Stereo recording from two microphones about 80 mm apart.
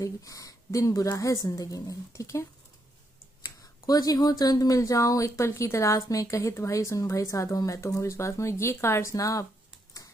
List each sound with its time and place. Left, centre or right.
0.0 s speech: left
3.4 s speech: left